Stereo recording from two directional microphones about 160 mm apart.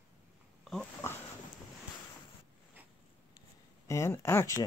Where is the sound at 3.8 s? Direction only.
15° left (ahead or behind).